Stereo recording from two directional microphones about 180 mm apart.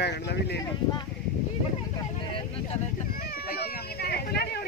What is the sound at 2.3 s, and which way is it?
Speech, 35° left (ahead or behind).